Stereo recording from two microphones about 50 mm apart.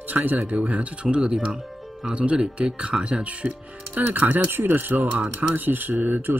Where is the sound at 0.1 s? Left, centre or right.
Right.